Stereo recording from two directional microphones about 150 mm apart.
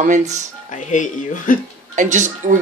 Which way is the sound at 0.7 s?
55° left (ahead or behind).